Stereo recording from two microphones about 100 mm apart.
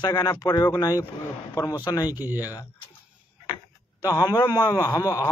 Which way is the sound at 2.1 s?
20° right (ahead or behind).